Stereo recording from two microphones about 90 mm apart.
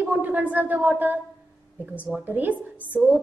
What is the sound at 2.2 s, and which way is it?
Speech, 20° right (ahead or behind).